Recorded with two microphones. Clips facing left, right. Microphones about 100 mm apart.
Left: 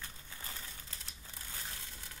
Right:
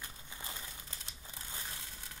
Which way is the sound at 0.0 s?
15° right (ahead or behind).